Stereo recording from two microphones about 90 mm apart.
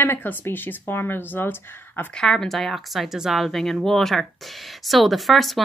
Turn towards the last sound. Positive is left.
turn(degrees=0)  # may be behind; listen again after turning